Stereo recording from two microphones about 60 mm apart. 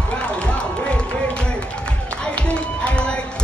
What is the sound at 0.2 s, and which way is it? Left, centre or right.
Music, centre.